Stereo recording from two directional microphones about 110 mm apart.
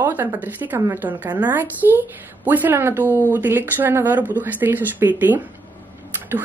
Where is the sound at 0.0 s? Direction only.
15° right (ahead or behind).